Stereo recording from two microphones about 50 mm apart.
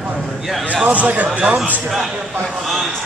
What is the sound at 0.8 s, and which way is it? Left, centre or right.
Speech, right.